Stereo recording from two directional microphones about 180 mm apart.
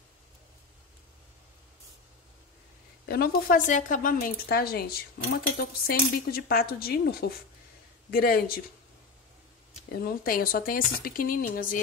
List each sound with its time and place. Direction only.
3.1 s a woman's voice: 55° left (ahead or behind)
10.0 s a woman's voice: 55° left (ahead or behind)